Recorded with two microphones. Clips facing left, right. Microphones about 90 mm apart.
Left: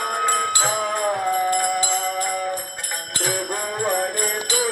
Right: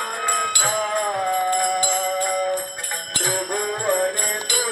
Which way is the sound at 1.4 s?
20° right (ahead or behind).